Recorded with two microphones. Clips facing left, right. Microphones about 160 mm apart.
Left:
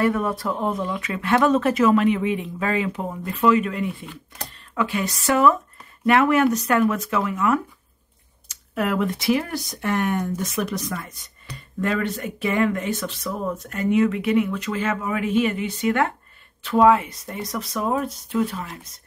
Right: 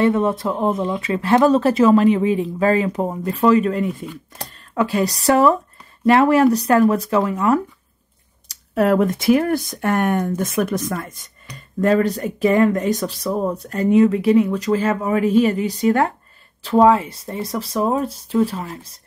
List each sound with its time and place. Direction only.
0.0 s speech: 25° right (ahead or behind); by 11.1 s 50° right (ahead or behind)
11.8 s speech: 40° right (ahead or behind)